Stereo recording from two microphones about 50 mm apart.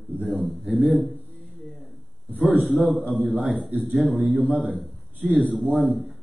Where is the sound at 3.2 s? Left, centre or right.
Centre.